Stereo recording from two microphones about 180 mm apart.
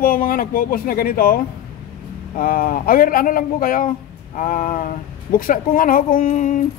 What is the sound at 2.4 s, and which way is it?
A man's voice, 50° left (ahead or behind).